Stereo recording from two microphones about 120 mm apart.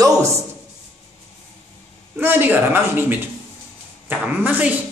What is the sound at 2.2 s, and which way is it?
Speech, 15° right (ahead or behind).